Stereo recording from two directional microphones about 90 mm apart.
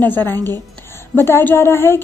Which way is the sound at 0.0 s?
20° left (ahead or behind).